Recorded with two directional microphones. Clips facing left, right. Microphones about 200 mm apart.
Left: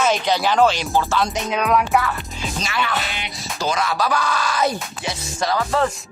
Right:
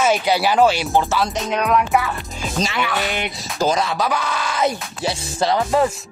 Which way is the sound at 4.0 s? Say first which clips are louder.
Even; 20° right (ahead or behind).